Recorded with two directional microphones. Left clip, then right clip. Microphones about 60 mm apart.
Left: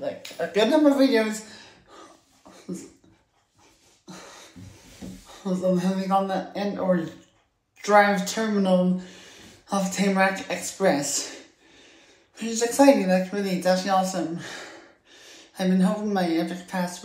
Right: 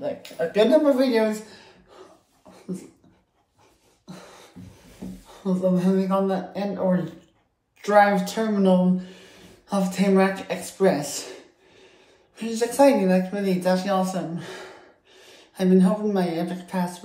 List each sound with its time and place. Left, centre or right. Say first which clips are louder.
0.0 s speech: right 2 dB; right
5.4 s speech: right 1 dB; right
12.4 s speech: right 1 dB; right